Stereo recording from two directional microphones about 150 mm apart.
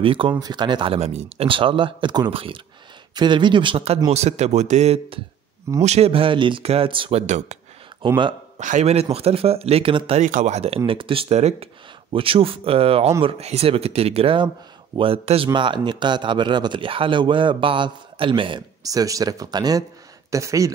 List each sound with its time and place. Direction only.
0.0 s speech: 35° right (ahead or behind); by 7.5 s 50° right (ahead or behind)
8.5 s speech: 50° right (ahead or behind)
10.2 s speech: 50° right (ahead or behind); by 20.7 s 20° right (ahead or behind)